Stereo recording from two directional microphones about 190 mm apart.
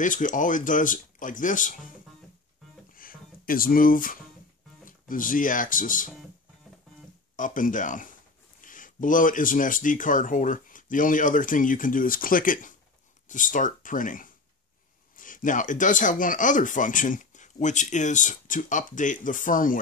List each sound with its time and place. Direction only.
0.0 s speech: 45° left (ahead or behind)
2.9 s music: 50° left (ahead or behind)
4.8 s speech: 45° left (ahead or behind)
7.3 s speech: 45° left (ahead or behind)